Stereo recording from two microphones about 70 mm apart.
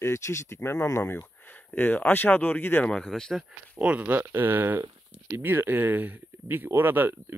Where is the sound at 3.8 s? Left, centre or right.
Right.